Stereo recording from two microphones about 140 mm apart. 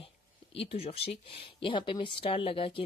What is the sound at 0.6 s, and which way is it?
Speech, 45° left (ahead or behind).